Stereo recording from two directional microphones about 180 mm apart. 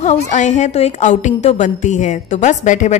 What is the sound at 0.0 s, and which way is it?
A woman's voice, 40° left (ahead or behind).